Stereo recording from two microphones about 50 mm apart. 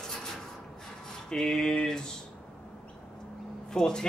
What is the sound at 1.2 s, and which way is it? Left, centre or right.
Speech, centre.